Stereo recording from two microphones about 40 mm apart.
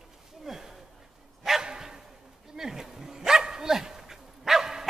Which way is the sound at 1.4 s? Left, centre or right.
Centre.